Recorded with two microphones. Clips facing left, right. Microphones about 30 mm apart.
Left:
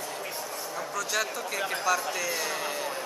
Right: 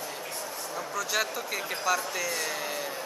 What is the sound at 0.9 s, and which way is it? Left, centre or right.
Speech, centre.